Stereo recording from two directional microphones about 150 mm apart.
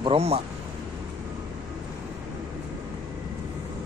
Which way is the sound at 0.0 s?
40° right (ahead or behind).